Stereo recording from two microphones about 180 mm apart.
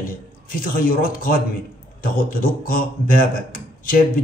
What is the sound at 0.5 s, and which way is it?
A man's voice, 50° left (ahead or behind).